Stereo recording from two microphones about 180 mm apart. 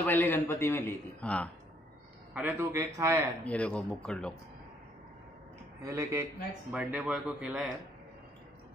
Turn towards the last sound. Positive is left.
turn(degrees=-5)  # may be behind; listen again after turning